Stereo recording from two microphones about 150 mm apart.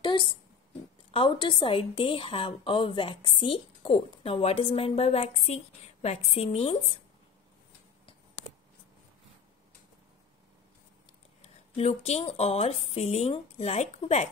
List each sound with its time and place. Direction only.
0.0 s a sound: 30° left (ahead or behind)
1.1 s a woman's voice: 35° left (ahead or behind)
11.4 s speech: 45° left (ahead or behind)